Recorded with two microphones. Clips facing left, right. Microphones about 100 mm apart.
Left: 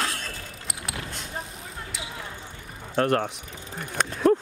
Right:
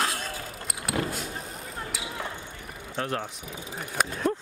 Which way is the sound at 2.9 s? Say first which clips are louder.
Left 8 dB; 55° left (ahead or behind).